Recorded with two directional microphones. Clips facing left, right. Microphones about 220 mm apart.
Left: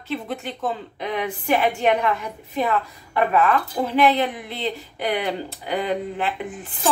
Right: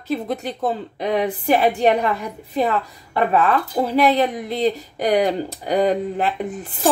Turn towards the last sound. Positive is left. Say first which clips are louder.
# right 4 dB
turn(degrees=-40)  # may be behind; listen again after turning